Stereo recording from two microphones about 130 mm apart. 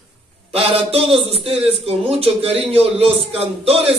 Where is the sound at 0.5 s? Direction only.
50° right (ahead or behind).